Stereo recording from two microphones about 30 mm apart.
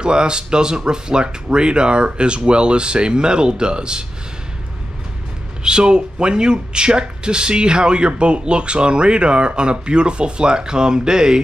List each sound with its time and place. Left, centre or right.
0.0 s speech: right
5.6 s speech: right